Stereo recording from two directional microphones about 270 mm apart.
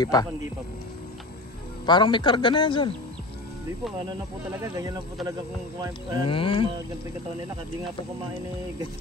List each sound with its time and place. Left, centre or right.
0.0 s a man's voice: centre
1.9 s a man's voice: centre
4.5 s speech: centre
6.2 s speech: centre